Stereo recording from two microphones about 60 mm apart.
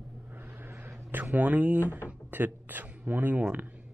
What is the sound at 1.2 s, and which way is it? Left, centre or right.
Speech, right.